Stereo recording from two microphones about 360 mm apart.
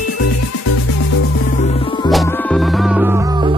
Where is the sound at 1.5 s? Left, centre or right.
Centre.